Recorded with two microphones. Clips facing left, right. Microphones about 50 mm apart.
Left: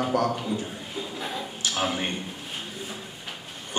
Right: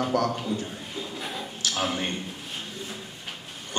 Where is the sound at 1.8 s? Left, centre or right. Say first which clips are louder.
Left 1 dB; centre.